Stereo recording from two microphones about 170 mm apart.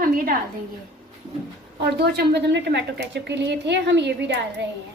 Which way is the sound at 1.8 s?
75° right (ahead or behind).